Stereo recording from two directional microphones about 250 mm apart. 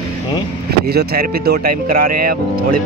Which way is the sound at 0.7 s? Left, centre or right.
Right.